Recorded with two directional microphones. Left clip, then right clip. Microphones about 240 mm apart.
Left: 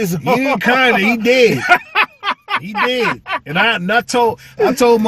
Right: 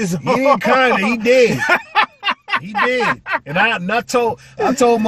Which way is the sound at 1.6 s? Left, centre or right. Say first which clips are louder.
Left 2 dB; centre.